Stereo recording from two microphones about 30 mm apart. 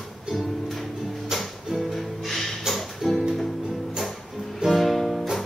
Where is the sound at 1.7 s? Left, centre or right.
Centre.